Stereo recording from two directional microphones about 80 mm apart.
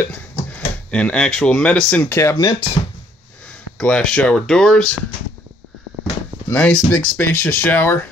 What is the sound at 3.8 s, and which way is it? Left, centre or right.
Speech, centre.